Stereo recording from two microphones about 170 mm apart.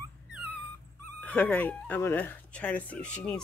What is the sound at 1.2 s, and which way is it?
Speech, 10° left (ahead or behind).